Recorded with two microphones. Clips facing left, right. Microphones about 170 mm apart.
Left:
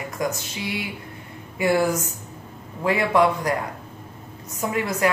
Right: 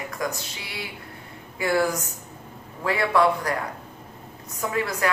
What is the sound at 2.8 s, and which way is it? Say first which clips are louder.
Speech: left 2 dB; 20° left (ahead or behind).